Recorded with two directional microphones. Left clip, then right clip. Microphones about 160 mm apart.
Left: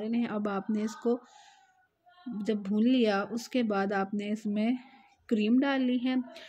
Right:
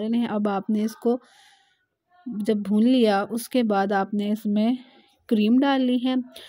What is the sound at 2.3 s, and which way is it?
Speech, 45° right (ahead or behind).